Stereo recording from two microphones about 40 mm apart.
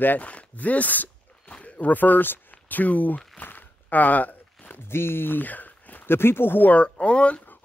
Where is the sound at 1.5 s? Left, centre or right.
Left.